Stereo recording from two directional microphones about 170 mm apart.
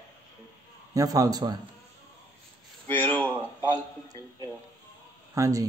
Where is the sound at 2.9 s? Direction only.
10° left (ahead or behind).